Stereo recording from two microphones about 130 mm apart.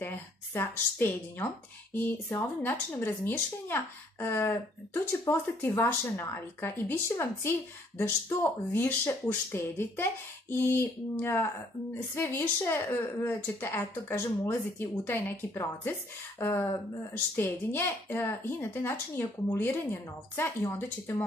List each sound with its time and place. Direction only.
0.0 s speech: 15° left (ahead or behind)
8.7 s speech: 15° left (ahead or behind)